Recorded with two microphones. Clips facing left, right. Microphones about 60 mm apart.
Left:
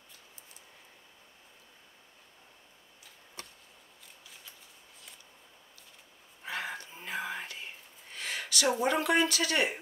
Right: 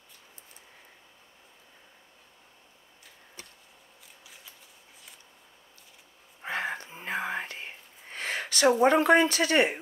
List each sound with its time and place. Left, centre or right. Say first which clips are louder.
6.4 s whispering: right 5 dB; right
8.8 s speech: right 7 dB; right